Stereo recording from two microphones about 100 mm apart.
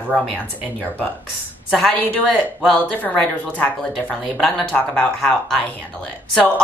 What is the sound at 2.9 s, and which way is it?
A woman's voice, 15° left (ahead or behind).